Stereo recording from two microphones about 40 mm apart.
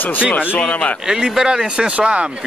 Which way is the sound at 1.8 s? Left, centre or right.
Right.